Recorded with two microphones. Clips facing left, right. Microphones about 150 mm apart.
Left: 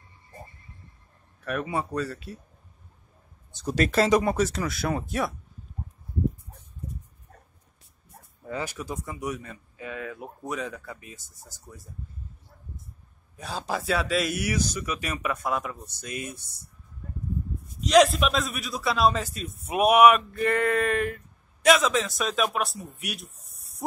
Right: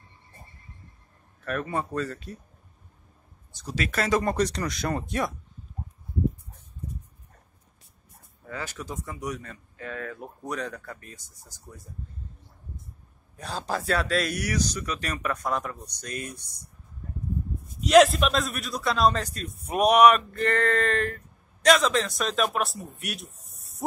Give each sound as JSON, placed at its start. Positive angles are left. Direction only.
{"t": 1.4, "sound": "speech", "side_deg": 10}
{"t": 3.6, "sound": "speech", "side_deg": 45}
{"t": 3.9, "sound": "speech", "side_deg": 25}
{"t": 4.2, "sound": "a man's voice", "side_deg": 5}
{"t": 8.5, "sound": "speech", "side_deg": 15}
{"t": 13.4, "sound": "a man's voice", "side_deg": 5}
{"t": 17.7, "sound": "a man's voice", "side_deg": 0}